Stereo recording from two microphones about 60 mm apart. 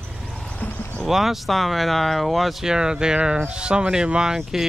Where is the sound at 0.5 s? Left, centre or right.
Left.